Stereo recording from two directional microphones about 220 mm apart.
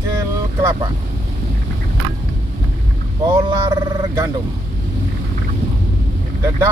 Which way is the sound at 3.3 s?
15° right (ahead or behind).